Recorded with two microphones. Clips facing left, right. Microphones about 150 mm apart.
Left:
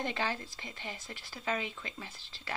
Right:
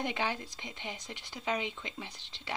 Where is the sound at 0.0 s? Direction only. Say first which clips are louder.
Right 1 dB; 15° right (ahead or behind).